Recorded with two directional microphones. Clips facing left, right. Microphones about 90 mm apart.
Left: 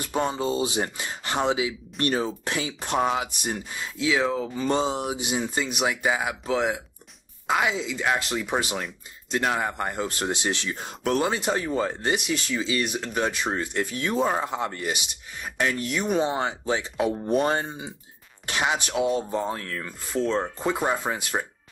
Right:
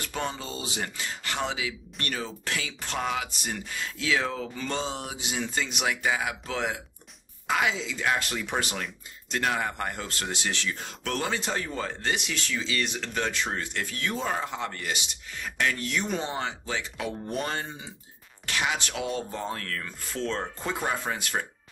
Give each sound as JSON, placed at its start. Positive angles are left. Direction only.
{"t": 0.0, "sound": "speech", "side_deg": 20}